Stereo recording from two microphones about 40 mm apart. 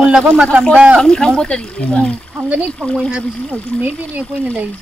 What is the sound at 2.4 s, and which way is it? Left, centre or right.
Speech, right.